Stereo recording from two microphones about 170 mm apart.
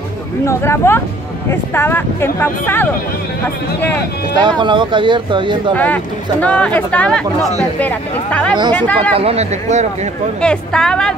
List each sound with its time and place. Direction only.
0.5 s speech: 15° left (ahead or behind)
4.4 s speech: 25° right (ahead or behind)
6.4 s speech: 10° left (ahead or behind)
9.1 s speech: 35° right (ahead or behind)
10.4 s a woman's voice: 5° left (ahead or behind)